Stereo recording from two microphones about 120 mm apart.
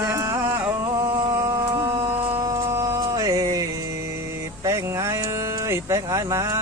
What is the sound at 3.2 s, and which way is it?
Music, 30° right (ahead or behind).